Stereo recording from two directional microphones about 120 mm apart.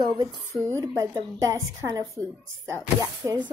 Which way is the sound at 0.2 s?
35° right (ahead or behind).